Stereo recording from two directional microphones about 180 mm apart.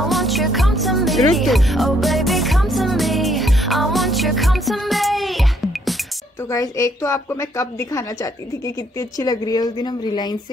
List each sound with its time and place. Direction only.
0.0 s music: centre (ahead or behind)
6.5 s a woman's voice: 15° left (ahead or behind)